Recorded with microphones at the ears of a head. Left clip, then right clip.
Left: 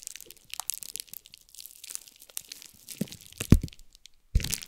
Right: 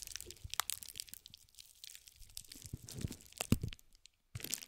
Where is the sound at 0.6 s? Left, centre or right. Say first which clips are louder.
Left 6 dB; left.